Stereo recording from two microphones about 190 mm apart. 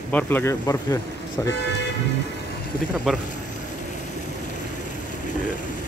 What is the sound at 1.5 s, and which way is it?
Speech, 65° left (ahead or behind).